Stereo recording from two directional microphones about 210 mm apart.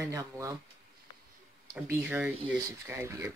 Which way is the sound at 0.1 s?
15° right (ahead or behind).